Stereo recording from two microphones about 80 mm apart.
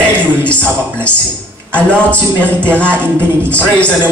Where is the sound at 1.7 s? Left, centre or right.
Centre.